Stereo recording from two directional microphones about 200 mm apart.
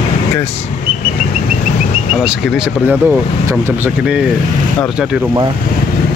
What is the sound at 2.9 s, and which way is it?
Speech, 10° right (ahead or behind).